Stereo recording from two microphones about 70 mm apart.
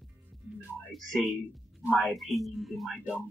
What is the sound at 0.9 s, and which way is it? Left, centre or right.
Speech, centre.